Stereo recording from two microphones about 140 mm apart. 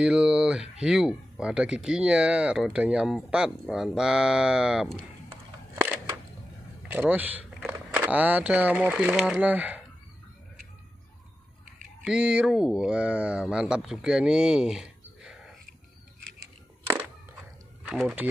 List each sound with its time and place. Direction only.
0.0 s speech: 5° right (ahead or behind)
6.9 s speech: 10° right (ahead or behind)
12.0 s speech: 5° right (ahead or behind)
16.8 s a sound: 20° right (ahead or behind)
17.9 s speech: 5° right (ahead or behind)